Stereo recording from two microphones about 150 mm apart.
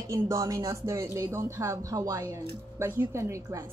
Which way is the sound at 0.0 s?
20° right (ahead or behind).